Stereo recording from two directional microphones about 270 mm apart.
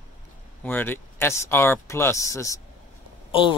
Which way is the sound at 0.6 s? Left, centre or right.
Centre.